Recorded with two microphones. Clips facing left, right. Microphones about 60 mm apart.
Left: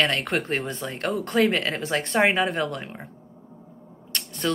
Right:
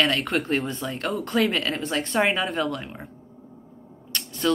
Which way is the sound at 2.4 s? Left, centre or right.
Left.